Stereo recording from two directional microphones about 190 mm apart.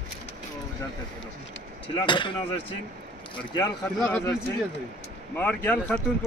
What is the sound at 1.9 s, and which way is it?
Speech, 25° left (ahead or behind).